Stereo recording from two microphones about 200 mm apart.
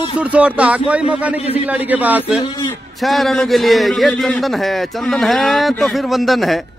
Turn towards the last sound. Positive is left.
turn(degrees=0)  # may be behind; listen again after turning